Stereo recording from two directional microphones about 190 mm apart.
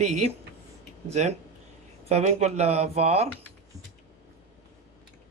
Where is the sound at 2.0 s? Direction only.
35° right (ahead or behind).